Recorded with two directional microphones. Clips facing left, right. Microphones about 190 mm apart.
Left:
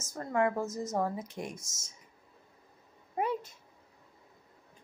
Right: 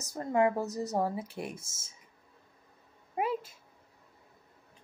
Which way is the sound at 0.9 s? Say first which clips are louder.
Right 1 dB; 10° right (ahead or behind).